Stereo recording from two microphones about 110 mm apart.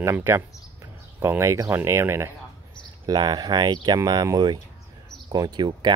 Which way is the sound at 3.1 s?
40° right (ahead or behind).